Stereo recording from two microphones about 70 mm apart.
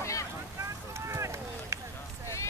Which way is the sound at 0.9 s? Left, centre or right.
Right.